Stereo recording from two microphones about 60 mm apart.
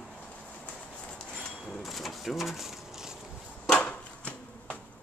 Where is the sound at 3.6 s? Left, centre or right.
Centre.